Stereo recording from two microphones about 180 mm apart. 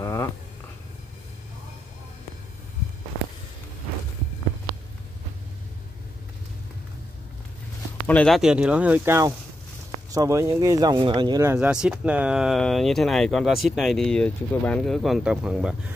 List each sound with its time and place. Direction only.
0.0 s a sound: 15° left (ahead or behind)
8.1 s speech: 5° left (ahead or behind); by 11.5 s 20° right (ahead or behind)
11.5 s speech: 5° right (ahead or behind)